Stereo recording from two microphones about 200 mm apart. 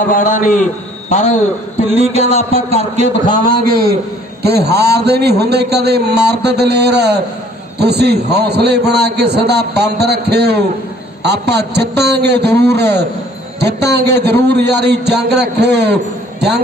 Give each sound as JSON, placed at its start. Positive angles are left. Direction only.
{"t": 0.1, "sound": "a man's voice", "side_deg": 40}
{"t": 1.9, "sound": "a man's voice", "side_deg": -30}